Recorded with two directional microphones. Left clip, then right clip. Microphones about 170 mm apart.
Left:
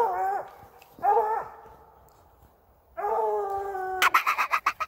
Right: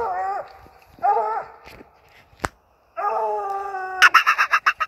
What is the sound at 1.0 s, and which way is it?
Livestock, 55° right (ahead or behind).